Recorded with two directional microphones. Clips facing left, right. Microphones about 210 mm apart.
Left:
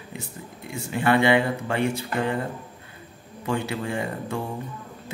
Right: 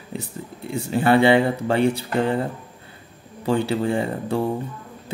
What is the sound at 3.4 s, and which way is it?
Speech, 30° right (ahead or behind).